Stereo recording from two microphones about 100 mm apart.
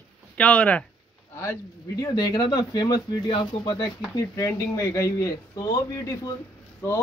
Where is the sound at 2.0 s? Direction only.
35° left (ahead or behind).